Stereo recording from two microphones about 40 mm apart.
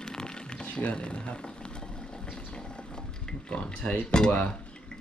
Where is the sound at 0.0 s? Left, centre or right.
Centre.